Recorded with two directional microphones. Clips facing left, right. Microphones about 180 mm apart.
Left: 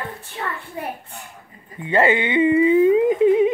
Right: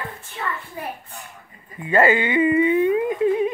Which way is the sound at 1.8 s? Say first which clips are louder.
Even; 25° left (ahead or behind).